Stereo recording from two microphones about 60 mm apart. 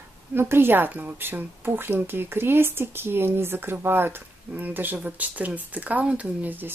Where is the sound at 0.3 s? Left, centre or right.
Right.